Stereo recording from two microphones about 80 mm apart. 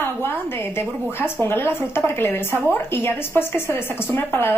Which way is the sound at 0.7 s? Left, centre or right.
Left.